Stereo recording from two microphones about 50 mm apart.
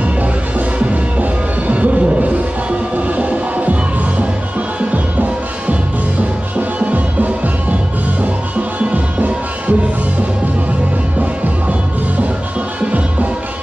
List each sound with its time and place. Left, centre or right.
0.2 s music: right
4.9 s music: right
6.8 s music: right
8.7 s music: right